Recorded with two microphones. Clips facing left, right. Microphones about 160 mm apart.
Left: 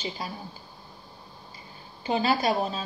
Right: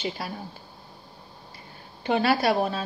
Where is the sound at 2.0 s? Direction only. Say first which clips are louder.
Right 2 dB; 60° right (ahead or behind).